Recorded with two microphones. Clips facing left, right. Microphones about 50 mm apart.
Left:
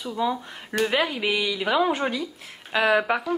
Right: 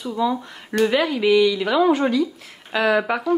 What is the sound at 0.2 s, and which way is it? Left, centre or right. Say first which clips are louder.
Speech: right 3 dB; centre.